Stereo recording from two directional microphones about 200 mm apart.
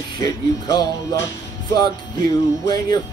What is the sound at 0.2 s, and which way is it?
Music, 20° left (ahead or behind).